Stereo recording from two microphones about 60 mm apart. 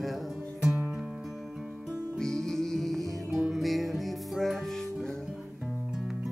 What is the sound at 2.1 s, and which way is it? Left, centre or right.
Music, centre.